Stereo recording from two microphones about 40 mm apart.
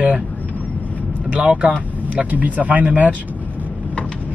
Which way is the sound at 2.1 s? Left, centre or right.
Right.